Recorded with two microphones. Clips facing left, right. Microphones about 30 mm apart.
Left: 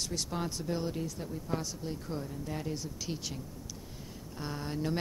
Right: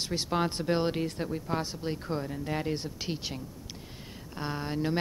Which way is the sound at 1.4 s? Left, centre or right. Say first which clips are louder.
Right 4 dB; right.